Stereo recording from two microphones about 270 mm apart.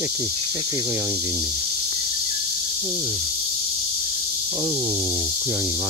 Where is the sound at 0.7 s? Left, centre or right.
Centre.